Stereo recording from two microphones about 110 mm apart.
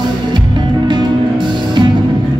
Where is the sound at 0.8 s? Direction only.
45° right (ahead or behind).